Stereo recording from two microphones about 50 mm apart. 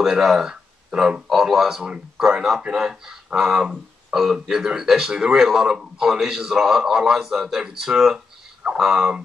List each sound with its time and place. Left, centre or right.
0.0 s speech: centre